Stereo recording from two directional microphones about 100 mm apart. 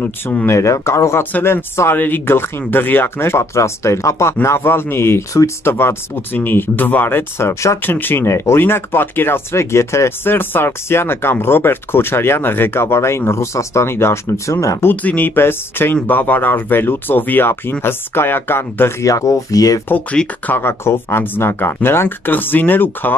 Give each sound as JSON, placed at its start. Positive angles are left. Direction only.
{"t": 0.0, "sound": "speech", "side_deg": 15}
{"t": 0.5, "sound": "speech", "side_deg": 30}
{"t": 14.9, "sound": "speech", "side_deg": 20}
{"t": 19.9, "sound": "speech", "side_deg": 15}